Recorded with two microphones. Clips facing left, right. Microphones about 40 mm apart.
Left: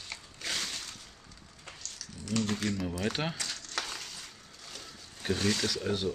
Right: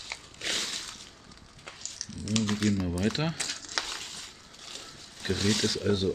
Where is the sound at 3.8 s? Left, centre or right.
Right.